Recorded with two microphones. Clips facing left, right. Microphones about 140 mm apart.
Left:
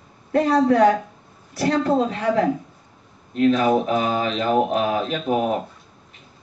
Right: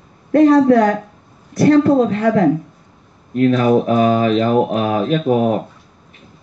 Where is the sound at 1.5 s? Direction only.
50° right (ahead or behind).